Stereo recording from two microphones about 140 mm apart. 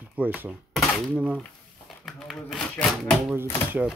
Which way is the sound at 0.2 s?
10° right (ahead or behind).